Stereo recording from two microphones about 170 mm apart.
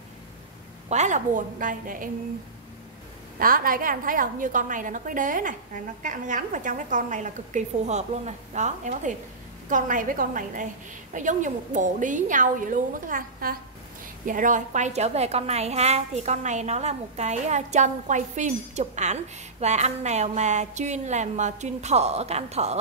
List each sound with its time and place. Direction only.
0.8 s a woman's voice: 45° right (ahead or behind)
3.3 s a woman's voice: 55° right (ahead or behind); by 22.8 s 40° right (ahead or behind)